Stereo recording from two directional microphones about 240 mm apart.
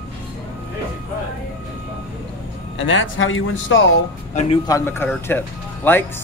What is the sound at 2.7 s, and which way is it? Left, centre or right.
A man's voice, left.